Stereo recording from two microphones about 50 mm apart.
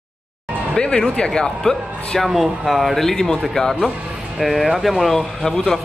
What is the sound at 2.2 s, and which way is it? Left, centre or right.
A man's voice, centre.